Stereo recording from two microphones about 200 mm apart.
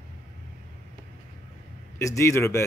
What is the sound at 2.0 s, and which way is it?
Speech, 15° left (ahead or behind).